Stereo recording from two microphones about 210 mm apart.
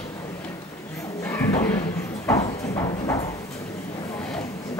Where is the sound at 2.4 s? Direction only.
15° left (ahead or behind).